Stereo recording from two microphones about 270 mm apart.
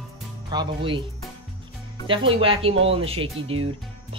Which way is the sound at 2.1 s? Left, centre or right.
Centre.